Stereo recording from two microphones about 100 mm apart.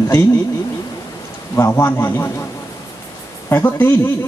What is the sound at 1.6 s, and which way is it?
Speech, 25° left (ahead or behind).